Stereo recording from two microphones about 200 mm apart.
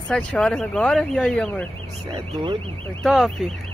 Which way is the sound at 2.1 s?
25° right (ahead or behind).